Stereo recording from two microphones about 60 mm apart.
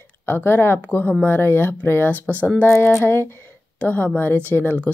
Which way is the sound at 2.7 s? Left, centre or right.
Left.